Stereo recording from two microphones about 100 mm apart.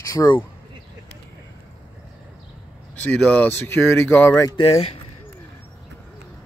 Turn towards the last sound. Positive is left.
turn(degrees=85)